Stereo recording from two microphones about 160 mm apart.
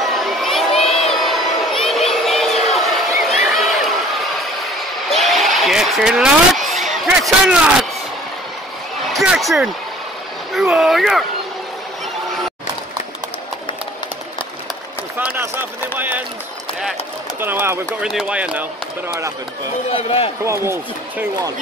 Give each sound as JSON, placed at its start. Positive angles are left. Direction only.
{"t": 0.0, "sound": "crowd", "side_deg": 0}
{"t": 1.0, "sound": "a sound", "side_deg": 0}
{"t": 5.1, "sound": "vehicle", "side_deg": 0}
{"t": 9.1, "sound": "speech", "side_deg": 0}
{"t": 15.1, "sound": "speech", "side_deg": -10}
{"t": 17.4, "sound": "speech", "side_deg": -15}
{"t": 17.8, "sound": "speech", "side_deg": -5}
{"t": 19.9, "sound": "a man's voice", "side_deg": 35}
{"t": 20.4, "sound": "speech", "side_deg": -15}